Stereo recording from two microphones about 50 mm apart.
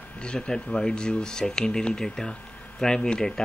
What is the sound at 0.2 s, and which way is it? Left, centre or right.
Speech, centre.